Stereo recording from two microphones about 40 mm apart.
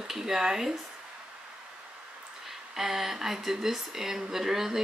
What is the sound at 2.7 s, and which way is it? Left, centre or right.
Speech, centre.